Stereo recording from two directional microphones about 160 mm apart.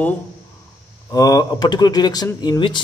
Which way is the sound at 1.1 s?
20° left (ahead or behind).